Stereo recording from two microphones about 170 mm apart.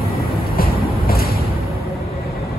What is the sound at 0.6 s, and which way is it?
Music, 60° left (ahead or behind).